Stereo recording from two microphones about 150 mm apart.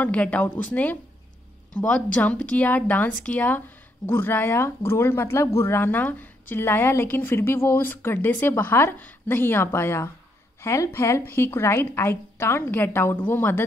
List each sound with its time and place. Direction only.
0.0 s speech: 10° left (ahead or behind)